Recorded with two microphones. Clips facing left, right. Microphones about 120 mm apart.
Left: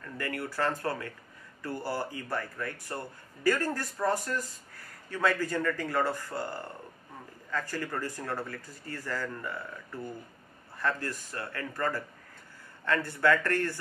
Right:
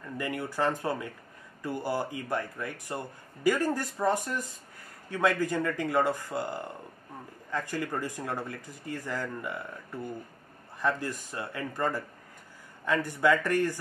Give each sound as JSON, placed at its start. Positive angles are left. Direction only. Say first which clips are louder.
{"t": 0.0, "sound": "speech", "louder": "right 2 dB", "side_deg": -15}